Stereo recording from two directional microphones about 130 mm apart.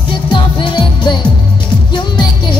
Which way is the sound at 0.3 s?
40° left (ahead or behind).